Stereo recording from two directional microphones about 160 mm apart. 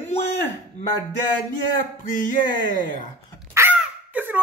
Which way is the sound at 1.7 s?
55° left (ahead or behind).